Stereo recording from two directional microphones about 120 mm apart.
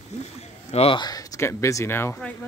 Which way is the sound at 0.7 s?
55° left (ahead or behind).